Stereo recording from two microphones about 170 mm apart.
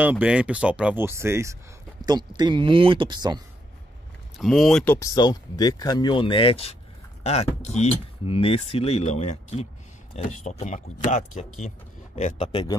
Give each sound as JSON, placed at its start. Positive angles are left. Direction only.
{"t": 0.0, "sound": "speech", "side_deg": -10}
{"t": 4.4, "sound": "speech", "side_deg": 0}
{"t": 4.9, "sound": "speech", "side_deg": 20}